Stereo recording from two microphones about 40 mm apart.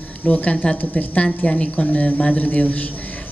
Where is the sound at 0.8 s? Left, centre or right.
Left.